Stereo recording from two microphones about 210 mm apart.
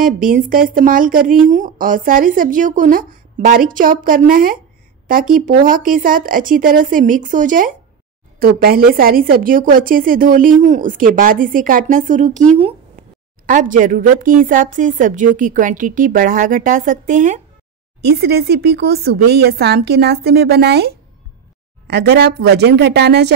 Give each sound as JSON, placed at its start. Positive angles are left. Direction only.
{"t": 0.0, "sound": "a woman's voice", "side_deg": -40}
{"t": 18.0, "sound": "speech", "side_deg": -50}